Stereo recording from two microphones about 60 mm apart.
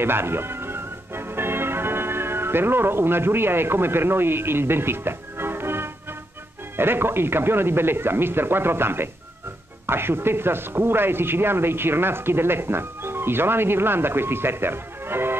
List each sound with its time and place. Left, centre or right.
0.0 s music: right
6.8 s speech: right